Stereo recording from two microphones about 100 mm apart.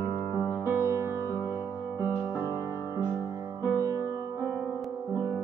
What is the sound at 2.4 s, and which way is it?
Music, 35° right (ahead or behind).